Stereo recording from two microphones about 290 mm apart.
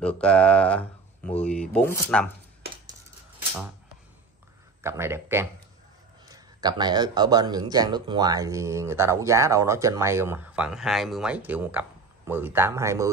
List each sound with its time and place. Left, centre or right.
0.0 s speech: centre
4.8 s speech: centre